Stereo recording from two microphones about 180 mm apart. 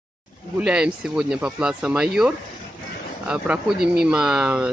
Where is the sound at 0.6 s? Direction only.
5° right (ahead or behind).